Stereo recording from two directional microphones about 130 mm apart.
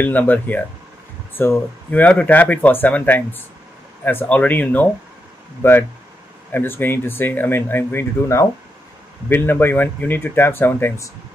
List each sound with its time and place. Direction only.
0.0 s speech: 15° left (ahead or behind)